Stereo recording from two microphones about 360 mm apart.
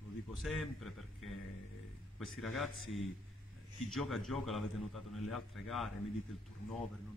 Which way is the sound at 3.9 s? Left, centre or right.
Centre.